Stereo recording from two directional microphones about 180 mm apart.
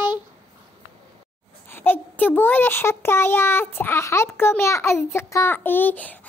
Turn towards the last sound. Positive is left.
turn(degrees=10)  # may be behind; listen again after turning